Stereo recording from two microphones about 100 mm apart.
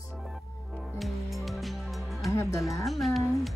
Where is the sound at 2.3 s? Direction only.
30° left (ahead or behind).